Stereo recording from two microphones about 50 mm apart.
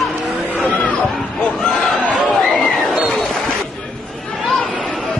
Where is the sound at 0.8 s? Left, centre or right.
Left.